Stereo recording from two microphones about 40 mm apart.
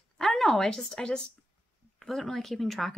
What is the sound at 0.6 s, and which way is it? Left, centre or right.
A woman's voice, centre.